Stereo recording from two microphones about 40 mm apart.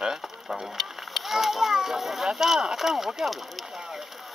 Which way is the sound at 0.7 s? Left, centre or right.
Centre.